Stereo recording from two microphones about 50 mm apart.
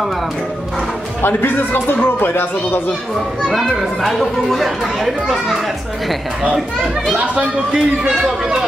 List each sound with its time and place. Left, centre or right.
1.2 s a man's voice: left
3.4 s speech: centre
7.2 s speech: right